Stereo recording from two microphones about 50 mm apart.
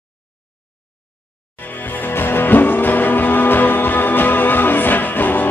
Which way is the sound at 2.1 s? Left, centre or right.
Left.